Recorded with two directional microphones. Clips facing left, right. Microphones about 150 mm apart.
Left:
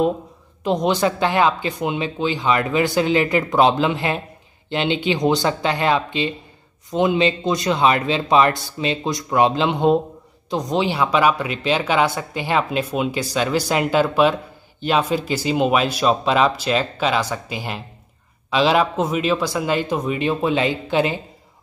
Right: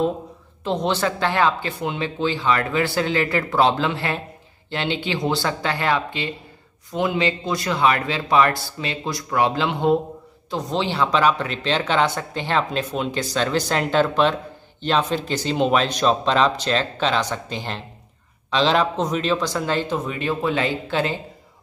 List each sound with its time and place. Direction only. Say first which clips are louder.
0.7 s a man's voice: left 3 dB; 15° left (ahead or behind)